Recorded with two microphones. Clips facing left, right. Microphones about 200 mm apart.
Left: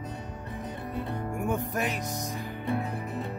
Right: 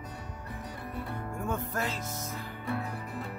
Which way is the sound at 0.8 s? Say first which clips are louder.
Left 4 dB; 20° left (ahead or behind).